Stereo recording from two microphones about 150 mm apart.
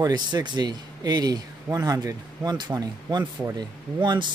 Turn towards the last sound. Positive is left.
turn(degrees=-30)  # may be behind; listen again after turning